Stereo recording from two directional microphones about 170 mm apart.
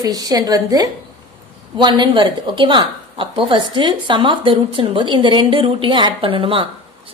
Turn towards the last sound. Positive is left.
turn(degrees=-30)  # may be behind; listen again after turning